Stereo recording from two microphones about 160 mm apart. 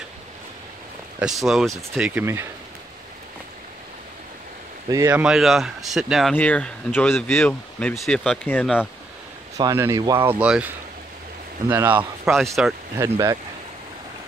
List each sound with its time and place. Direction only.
1.2 s speech: centre (ahead or behind)
4.8 s speech: 20° right (ahead or behind)
5.1 s speech: 5° right (ahead or behind)
6.3 s speech: 10° left (ahead or behind)
9.6 s speech: 20° right (ahead or behind)
11.7 s speech: 10° right (ahead or behind)
12.9 s speech: 20° right (ahead or behind)